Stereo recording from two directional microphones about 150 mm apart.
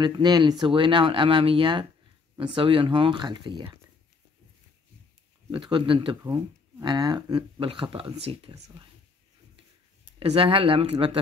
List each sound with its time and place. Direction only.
0.0 s speech: 30° right (ahead or behind)
5.5 s speech: 35° right (ahead or behind)
10.1 s speech: 35° right (ahead or behind)